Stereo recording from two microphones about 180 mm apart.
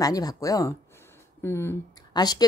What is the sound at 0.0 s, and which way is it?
Speech, 20° left (ahead or behind).